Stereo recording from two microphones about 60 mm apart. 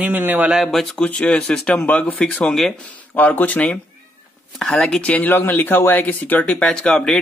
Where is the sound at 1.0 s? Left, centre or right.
Centre.